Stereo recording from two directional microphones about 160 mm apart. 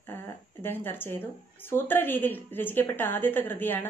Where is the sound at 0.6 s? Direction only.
10° left (ahead or behind).